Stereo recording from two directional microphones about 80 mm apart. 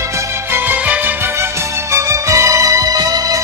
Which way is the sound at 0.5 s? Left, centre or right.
Right.